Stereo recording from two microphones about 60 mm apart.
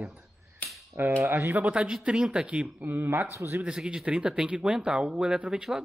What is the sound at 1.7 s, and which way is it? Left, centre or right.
Speech, centre.